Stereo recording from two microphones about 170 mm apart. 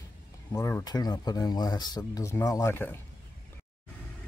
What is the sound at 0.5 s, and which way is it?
Speech, 15° left (ahead or behind).